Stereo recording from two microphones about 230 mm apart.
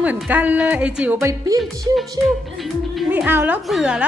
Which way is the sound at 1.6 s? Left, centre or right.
Centre.